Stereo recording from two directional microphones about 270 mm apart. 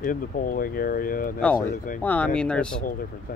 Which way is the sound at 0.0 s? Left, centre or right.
Left.